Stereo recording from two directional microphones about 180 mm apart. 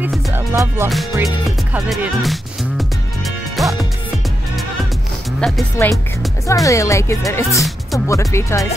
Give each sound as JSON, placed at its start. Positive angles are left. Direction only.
{"t": 0.0, "sound": "music", "side_deg": -10}
{"t": 1.2, "sound": "speech", "side_deg": 0}
{"t": 3.6, "sound": "music", "side_deg": 0}
{"t": 5.4, "sound": "speech", "side_deg": 10}